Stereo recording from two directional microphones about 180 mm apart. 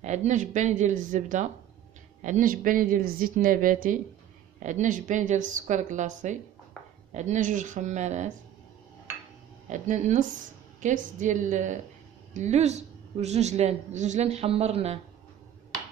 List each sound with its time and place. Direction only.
0.0 s a woman's voice: 40° right (ahead or behind)
9.7 s a woman's voice: 40° right (ahead or behind)